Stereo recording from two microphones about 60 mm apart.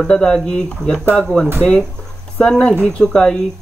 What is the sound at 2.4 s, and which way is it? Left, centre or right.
Speech, centre.